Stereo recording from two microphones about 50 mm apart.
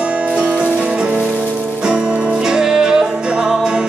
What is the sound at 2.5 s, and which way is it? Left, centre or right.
Music, centre.